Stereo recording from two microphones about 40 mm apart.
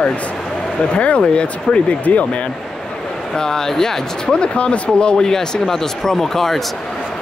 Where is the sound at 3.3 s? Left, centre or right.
Centre.